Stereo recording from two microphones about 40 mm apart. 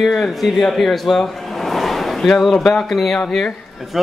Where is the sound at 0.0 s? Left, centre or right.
Centre.